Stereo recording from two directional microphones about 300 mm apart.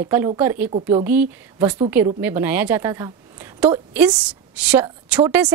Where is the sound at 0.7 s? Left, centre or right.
Centre.